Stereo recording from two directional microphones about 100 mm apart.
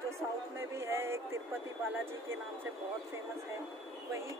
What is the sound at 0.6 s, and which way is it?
Speech, 25° right (ahead or behind).